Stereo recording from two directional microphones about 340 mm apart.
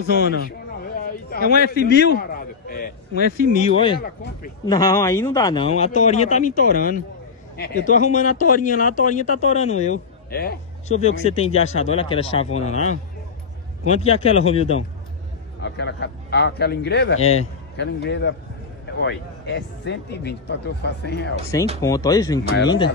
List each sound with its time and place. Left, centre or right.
0.0 s speech: right
1.0 s a sound: left
3.2 s speech: right
3.6 s speech: centre
4.0 s speech: left
4.6 s speech: centre
15.6 s speech: left
17.2 s speech: centre
17.7 s speech: left
21.8 s speech: centre